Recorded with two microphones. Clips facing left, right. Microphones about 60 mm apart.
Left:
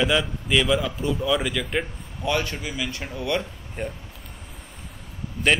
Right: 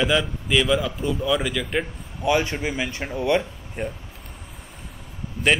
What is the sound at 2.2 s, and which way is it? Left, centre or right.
A man's voice, right.